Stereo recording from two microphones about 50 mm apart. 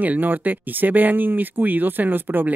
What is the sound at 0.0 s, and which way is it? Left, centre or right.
Speech, right.